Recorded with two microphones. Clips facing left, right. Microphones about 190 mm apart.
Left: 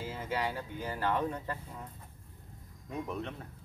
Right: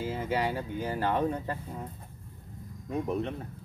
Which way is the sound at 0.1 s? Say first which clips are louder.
Right 4 dB; 20° right (ahead or behind).